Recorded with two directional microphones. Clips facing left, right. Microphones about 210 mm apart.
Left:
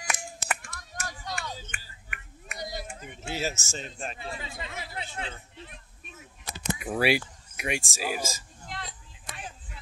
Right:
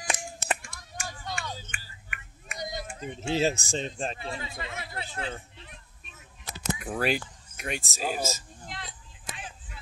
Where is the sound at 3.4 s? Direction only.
35° right (ahead or behind).